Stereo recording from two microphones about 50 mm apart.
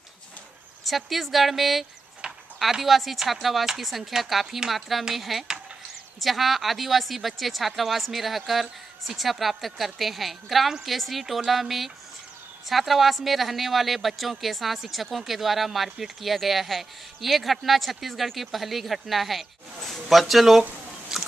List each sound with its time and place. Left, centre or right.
0.8 s speech: centre
2.2 s a sound: centre
2.6 s a man's voice: centre
21.1 s biting: centre